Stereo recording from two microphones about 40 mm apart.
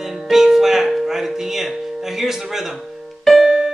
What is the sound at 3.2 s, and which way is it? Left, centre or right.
Music, centre.